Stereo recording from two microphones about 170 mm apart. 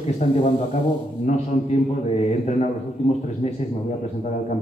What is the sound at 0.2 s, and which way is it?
A man's voice, 40° left (ahead or behind).